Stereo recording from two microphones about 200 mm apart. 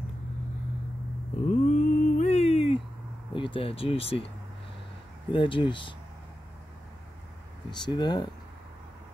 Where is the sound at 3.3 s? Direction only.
25° left (ahead or behind).